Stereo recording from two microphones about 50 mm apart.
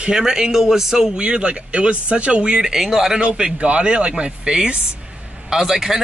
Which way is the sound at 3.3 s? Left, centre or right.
Right.